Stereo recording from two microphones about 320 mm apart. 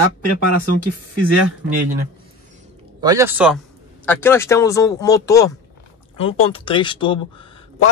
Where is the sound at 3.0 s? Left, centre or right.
Centre.